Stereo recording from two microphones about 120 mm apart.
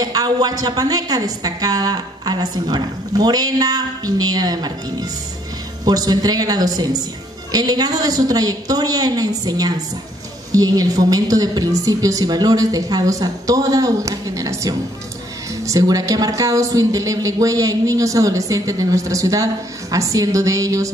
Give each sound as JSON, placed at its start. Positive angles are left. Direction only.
{"t": 0.0, "sound": "a woman's voice", "side_deg": -35}